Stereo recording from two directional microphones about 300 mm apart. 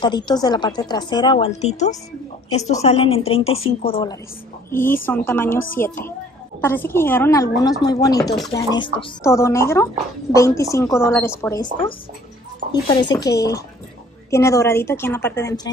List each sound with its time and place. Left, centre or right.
0.0 s a woman's voice: centre
6.6 s a woman's voice: centre